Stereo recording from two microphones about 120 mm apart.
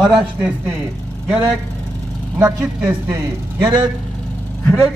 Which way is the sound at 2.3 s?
20° right (ahead or behind).